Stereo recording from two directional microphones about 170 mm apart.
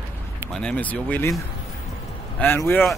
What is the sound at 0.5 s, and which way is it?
Speech, 5° left (ahead or behind).